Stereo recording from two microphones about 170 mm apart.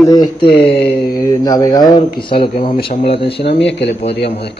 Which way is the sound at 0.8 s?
65° left (ahead or behind).